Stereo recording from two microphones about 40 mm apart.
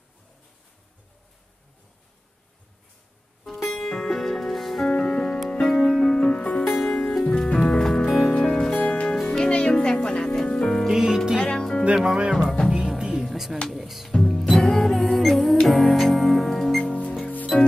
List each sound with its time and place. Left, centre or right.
3.4 s music: centre
4.8 s music: centre
6.2 s music: left
6.6 s music: centre
9.5 s music: left
10.9 s music: centre
11.3 s music: left
12.0 s music: centre
13.2 s music: centre
14.1 s music: centre
16.8 s music: left
17.5 s music: centre